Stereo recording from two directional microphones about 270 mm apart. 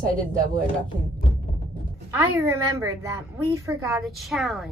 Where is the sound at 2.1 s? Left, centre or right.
Centre.